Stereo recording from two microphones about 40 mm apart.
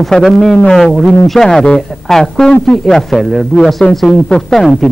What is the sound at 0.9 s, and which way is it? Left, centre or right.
Speech, centre.